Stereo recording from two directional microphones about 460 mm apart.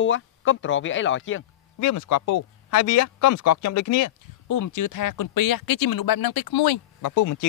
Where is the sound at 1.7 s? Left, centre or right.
Left.